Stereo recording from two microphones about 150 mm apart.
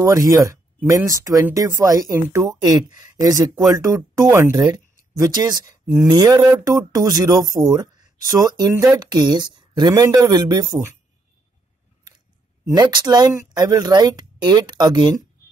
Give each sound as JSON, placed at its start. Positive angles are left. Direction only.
{"t": 0.0, "sound": "speech", "side_deg": -20}
{"t": 12.6, "sound": "speech", "side_deg": -25}